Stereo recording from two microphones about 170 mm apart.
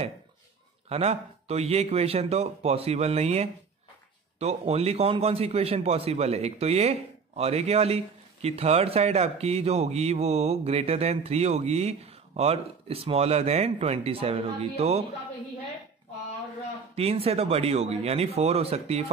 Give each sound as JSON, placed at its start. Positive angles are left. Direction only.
{"t": 0.8, "sound": "a man's voice", "side_deg": -35}
{"t": 16.9, "sound": "a man's voice", "side_deg": -35}